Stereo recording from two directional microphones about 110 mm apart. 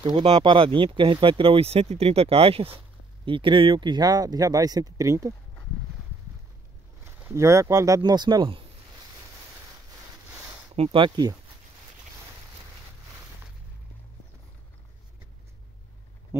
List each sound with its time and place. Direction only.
0.0 s speech: 55° right (ahead or behind)
3.3 s speech: 50° right (ahead or behind); by 5.3 s 30° right (ahead or behind)
7.3 s speech: 25° right (ahead or behind); by 8.6 s 45° right (ahead or behind)
10.8 s speech: 50° right (ahead or behind)